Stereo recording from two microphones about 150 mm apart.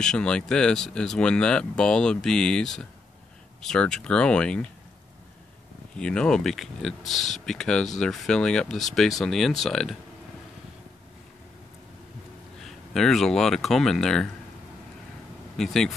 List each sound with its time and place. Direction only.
0.0 s speech: 5° left (ahead or behind)
5.9 s speech: 5° left (ahead or behind)
12.6 s speech: centre (ahead or behind)
15.5 s speech: 5° left (ahead or behind)